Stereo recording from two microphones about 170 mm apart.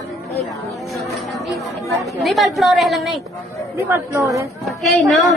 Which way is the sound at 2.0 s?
Centre (ahead or behind).